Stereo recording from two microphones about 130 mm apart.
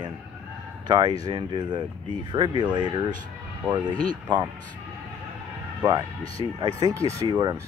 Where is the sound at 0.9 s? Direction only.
35° right (ahead or behind).